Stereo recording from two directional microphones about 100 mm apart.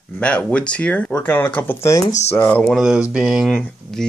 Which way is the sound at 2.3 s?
20° left (ahead or behind).